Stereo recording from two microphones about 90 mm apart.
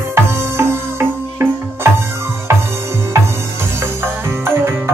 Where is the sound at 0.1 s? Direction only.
30° right (ahead or behind).